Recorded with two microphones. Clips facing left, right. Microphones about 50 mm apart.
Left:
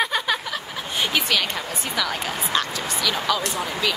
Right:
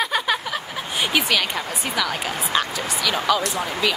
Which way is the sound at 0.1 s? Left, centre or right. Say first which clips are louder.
Right 2 dB; centre.